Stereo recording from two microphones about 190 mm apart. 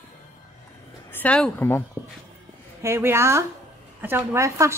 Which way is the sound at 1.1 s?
5° left (ahead or behind).